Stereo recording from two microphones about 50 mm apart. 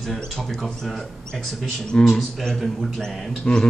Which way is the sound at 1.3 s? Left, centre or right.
Centre.